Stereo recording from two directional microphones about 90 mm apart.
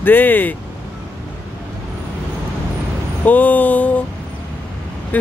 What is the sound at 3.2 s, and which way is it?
Speech, 15° left (ahead or behind).